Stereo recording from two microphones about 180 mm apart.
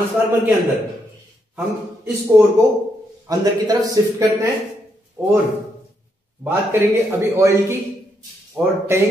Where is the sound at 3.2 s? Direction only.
20° right (ahead or behind).